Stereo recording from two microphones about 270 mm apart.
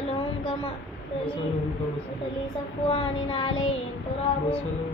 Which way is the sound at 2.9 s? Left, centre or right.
Centre.